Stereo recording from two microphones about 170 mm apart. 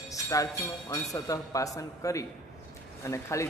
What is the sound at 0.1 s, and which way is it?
A man's voice, 20° left (ahead or behind).